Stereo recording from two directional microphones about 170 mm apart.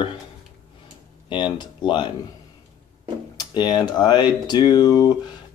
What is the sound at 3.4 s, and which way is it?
Speech, 25° left (ahead or behind).